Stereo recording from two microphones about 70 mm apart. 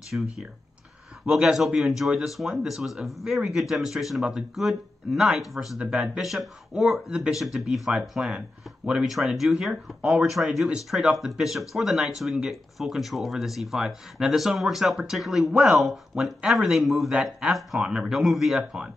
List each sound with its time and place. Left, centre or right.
0.1 s speech: right
1.2 s speech: centre
17.1 s speech: centre